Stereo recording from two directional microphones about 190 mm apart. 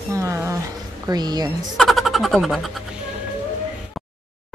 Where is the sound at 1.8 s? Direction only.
Centre (ahead or behind).